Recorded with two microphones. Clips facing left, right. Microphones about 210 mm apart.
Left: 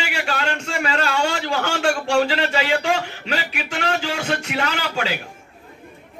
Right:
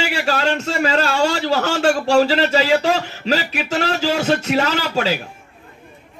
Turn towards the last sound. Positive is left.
turn(degrees=-40)  # may be behind; listen again after turning